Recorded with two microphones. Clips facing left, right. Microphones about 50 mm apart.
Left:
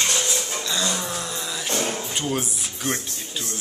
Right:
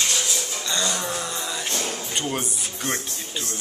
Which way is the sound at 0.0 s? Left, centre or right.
Left.